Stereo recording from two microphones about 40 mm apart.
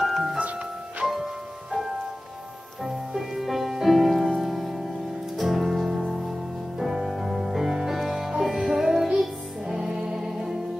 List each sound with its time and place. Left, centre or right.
0.0 s music: centre
7.9 s music: centre